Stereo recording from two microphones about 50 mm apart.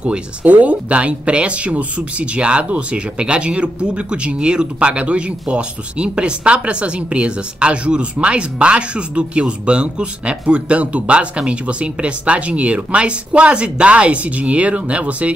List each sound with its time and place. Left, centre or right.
0.0 s speech: right